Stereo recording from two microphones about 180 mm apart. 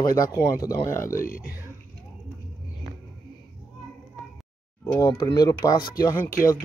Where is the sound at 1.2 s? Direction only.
55° left (ahead or behind).